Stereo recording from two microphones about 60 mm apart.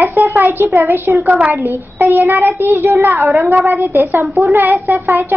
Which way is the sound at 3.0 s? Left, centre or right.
Right.